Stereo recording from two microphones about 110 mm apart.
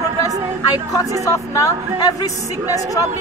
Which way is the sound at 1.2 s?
30° left (ahead or behind).